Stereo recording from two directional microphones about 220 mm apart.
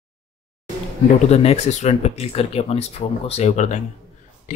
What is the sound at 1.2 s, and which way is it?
Speech, 30° left (ahead or behind).